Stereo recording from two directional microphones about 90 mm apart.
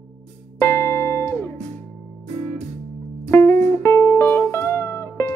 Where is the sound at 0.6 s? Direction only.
30° left (ahead or behind).